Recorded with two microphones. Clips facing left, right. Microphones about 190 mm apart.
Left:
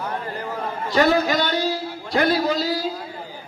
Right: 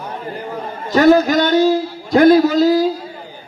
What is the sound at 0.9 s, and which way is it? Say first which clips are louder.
A man's voice: right 7 dB; 45° right (ahead or behind).